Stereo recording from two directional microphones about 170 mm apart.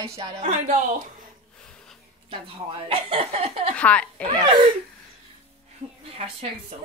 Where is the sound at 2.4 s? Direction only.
30° right (ahead or behind).